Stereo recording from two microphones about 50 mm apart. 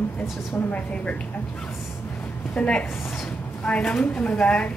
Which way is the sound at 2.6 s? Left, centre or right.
Left.